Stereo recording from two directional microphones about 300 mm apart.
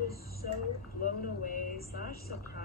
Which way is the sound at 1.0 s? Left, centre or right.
Left.